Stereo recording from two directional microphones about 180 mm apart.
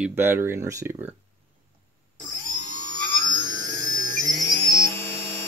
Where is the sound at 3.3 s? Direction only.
25° right (ahead or behind).